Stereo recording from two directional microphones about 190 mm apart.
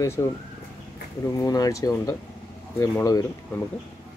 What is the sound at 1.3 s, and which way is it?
Speech, 20° left (ahead or behind).